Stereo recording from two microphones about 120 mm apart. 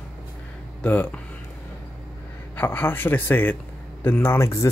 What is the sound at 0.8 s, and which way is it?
Speech, 15° left (ahead or behind).